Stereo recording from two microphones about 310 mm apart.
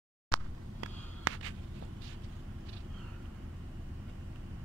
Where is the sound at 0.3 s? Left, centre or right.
Right.